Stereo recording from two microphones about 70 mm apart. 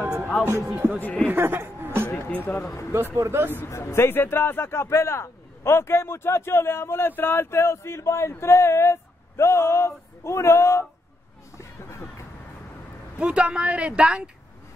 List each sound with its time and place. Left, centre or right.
0.7 s speech: right
2.1 s speech: left
2.6 s a man's voice: left
2.9 s speech: right
3.6 s a man's voice: left
11.5 s music: left
13.2 s speech: centre